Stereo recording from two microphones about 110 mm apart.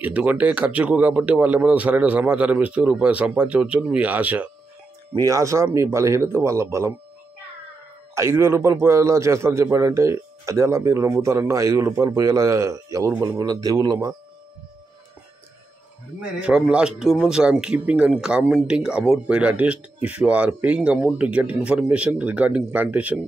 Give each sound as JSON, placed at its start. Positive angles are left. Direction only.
{"t": 0.0, "sound": "a man's voice", "side_deg": -15}
{"t": 5.1, "sound": "a man's voice", "side_deg": -30}
{"t": 8.1, "sound": "a man's voice", "side_deg": -25}
{"t": 16.2, "sound": "a man's voice", "side_deg": -10}